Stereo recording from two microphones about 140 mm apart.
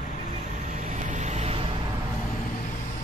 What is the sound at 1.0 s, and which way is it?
Vehicle, 60° right (ahead or behind).